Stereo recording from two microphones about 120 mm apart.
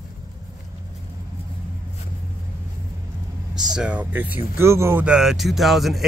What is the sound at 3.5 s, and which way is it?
A man's voice, 5° right (ahead or behind).